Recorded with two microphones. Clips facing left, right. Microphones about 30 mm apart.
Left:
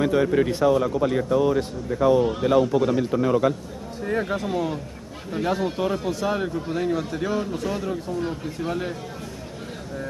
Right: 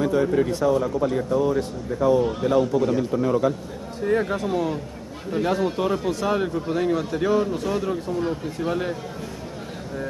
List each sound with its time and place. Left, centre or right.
0.0 s speech: left
1.1 s speech: left
4.0 s a man's voice: centre